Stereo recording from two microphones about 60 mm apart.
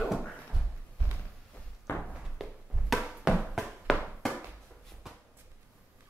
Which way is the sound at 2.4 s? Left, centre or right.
Centre.